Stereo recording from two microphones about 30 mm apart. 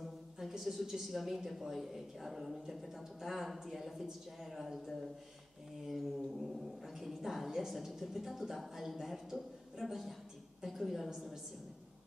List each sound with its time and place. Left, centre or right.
0.0 s a woman's voice: centre
5.9 s a woman's voice: centre